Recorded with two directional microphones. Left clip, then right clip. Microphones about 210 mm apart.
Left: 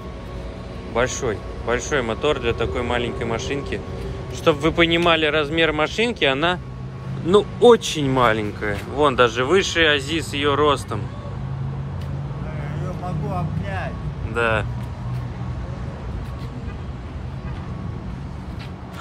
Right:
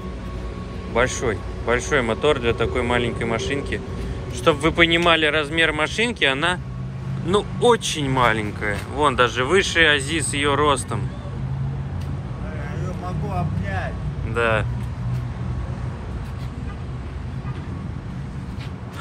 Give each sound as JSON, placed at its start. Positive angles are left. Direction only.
{"t": 0.9, "sound": "speech", "side_deg": 20}
{"t": 14.3, "sound": "speech", "side_deg": 15}